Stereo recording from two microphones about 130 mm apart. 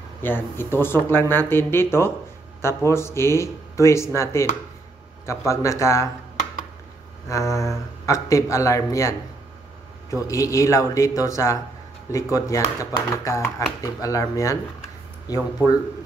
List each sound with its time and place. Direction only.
0.2 s speech: 15° left (ahead or behind)
5.5 s speech: 20° left (ahead or behind)
7.2 s speech: 25° left (ahead or behind)
10.1 s speech: 25° left (ahead or behind)